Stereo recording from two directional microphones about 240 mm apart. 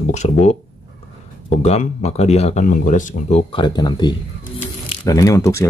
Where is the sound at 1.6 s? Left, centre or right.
Left.